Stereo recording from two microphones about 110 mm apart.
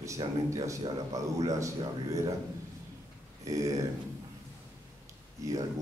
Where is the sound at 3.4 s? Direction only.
30° right (ahead or behind).